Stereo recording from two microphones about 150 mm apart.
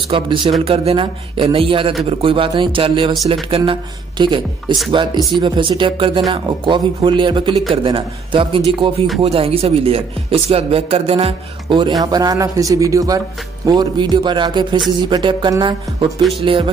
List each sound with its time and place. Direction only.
0.1 s speech: 35° right (ahead or behind)
12.0 s speech: 25° right (ahead or behind)